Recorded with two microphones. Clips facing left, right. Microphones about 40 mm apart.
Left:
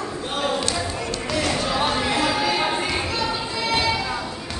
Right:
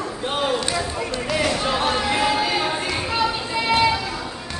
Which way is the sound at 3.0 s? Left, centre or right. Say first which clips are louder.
Right 3 dB; centre.